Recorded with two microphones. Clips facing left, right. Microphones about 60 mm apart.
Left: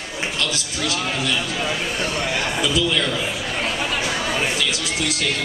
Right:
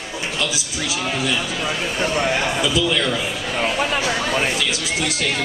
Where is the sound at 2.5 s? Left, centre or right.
Centre.